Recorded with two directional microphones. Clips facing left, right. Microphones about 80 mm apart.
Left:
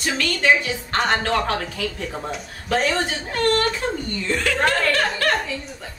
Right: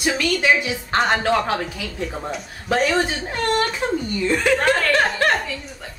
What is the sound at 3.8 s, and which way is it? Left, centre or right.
A woman's voice, right.